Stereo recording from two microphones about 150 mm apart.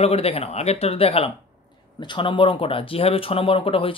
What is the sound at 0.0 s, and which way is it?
Speech, 40° left (ahead or behind).